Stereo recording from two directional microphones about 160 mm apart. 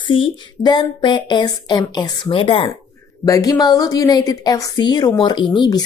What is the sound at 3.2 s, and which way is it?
Speech, 20° left (ahead or behind).